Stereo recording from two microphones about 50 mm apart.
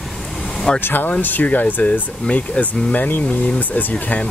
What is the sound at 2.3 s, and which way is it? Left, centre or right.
Speech, left.